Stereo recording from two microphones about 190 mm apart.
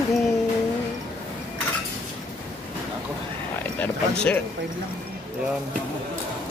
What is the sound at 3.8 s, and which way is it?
Speech, 5° left (ahead or behind).